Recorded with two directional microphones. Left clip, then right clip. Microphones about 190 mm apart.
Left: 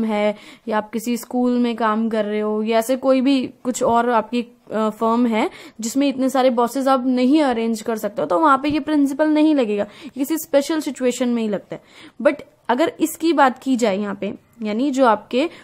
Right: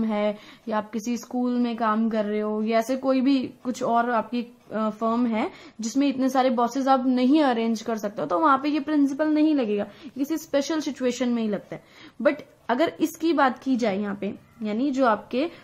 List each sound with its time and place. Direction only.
0.0 s speech: 35° left (ahead or behind)